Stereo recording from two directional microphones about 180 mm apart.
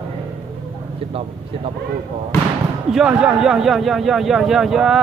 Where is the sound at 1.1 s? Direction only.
30° right (ahead or behind).